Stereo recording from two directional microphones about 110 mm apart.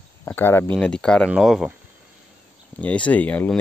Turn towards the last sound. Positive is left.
turn(degrees=15)  # may be behind; listen again after turning